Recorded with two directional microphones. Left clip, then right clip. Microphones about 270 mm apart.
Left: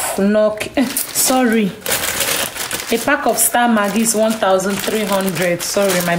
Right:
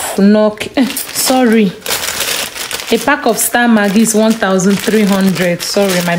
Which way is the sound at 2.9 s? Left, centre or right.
Right.